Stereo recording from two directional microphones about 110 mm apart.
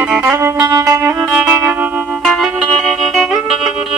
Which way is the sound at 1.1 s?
10° right (ahead or behind).